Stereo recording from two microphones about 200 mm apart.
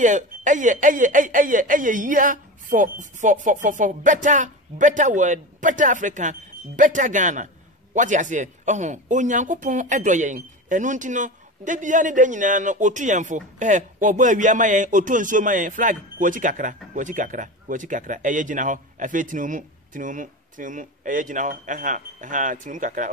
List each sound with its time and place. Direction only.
0.0 s speech: 40° right (ahead or behind)